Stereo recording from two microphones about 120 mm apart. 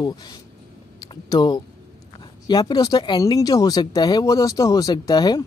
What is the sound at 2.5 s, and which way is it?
Speech, 35° left (ahead or behind).